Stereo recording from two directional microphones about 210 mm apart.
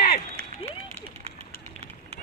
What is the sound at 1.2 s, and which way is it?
Vehicle, 30° right (ahead or behind).